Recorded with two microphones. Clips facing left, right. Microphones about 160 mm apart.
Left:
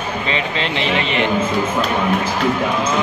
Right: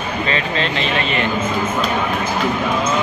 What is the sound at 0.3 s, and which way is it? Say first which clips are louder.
Speech: even; 15° left (ahead or behind).